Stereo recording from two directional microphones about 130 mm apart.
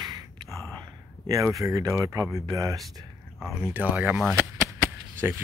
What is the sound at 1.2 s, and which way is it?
Speech, 25° right (ahead or behind).